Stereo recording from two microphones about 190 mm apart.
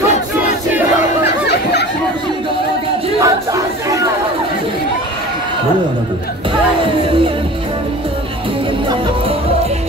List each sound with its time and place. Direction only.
1.5 s chatter: 60° left (ahead or behind)
3.2 s chatter: 15° right (ahead or behind)